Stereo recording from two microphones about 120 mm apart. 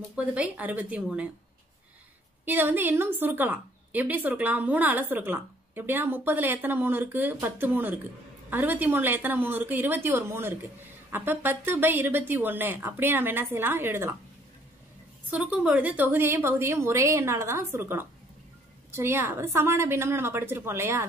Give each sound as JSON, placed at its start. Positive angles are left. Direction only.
{"t": 0.1, "sound": "a woman's voice", "side_deg": -10}
{"t": 2.4, "sound": "a woman's voice", "side_deg": -15}
{"t": 15.3, "sound": "a woman's voice", "side_deg": -10}